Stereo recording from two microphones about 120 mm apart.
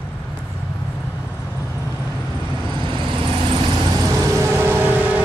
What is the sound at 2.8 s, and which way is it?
Vehicle, 45° right (ahead or behind).